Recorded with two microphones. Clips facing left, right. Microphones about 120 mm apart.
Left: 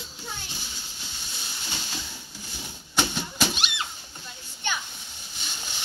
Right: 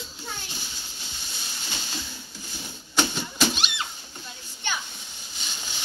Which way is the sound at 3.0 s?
10° left (ahead or behind).